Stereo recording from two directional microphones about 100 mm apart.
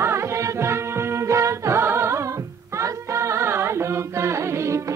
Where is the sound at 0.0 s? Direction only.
25° right (ahead or behind).